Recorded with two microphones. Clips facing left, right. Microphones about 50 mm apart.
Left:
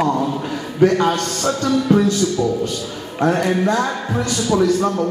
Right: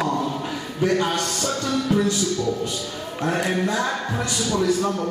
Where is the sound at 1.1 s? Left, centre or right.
Centre.